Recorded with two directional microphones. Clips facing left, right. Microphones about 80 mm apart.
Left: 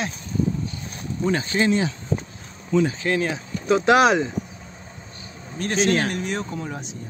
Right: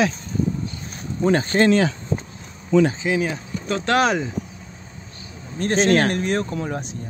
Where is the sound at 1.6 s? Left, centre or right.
Right.